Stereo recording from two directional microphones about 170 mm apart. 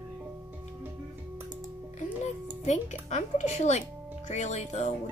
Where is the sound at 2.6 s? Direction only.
40° left (ahead or behind).